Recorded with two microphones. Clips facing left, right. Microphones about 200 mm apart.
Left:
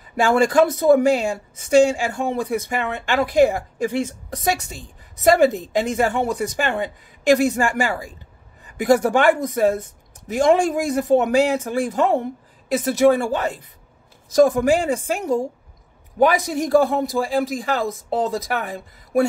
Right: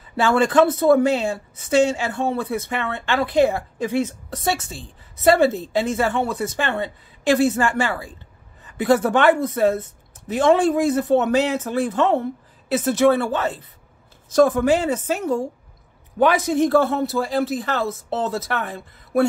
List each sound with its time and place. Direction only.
0.1 s a woman's voice: 15° left (ahead or behind)